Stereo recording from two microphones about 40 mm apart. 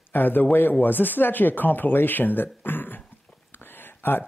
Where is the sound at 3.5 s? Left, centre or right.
Left.